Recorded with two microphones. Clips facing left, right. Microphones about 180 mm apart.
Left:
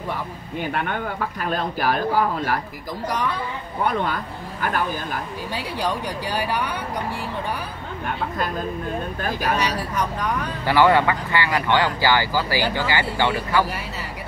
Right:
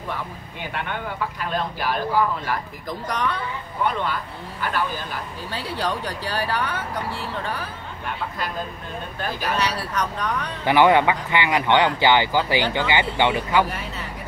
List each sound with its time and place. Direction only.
0.6 s speech: 45° left (ahead or behind)
3.8 s speech: 45° left (ahead or behind)
5.5 s speech: 15° left (ahead or behind)
9.2 s speech: 45° left (ahead or behind)
9.8 s speech: 10° left (ahead or behind)
10.6 s speech: 20° right (ahead or behind)